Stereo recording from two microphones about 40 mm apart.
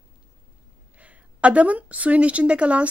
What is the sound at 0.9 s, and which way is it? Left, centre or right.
A woman's voice, right.